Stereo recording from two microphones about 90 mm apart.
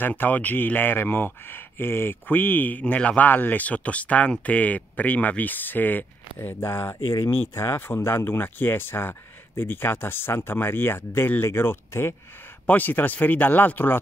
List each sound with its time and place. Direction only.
0.0 s speech: 20° left (ahead or behind)